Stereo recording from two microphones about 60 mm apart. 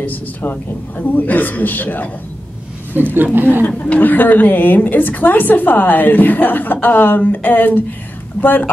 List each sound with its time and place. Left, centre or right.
0.0 s a woman's voice: left
3.0 s speech: right
3.6 s a woman's voice: left